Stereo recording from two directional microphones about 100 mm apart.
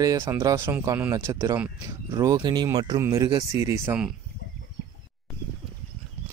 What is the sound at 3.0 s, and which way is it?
Speech, 30° right (ahead or behind).